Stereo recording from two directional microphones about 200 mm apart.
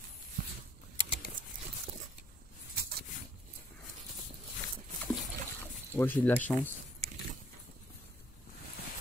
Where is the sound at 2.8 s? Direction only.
50° right (ahead or behind).